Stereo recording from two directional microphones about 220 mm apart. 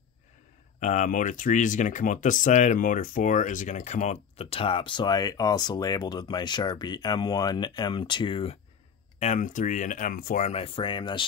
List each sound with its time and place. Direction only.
0.7 s speech: 35° left (ahead or behind)
9.2 s speech: 35° left (ahead or behind)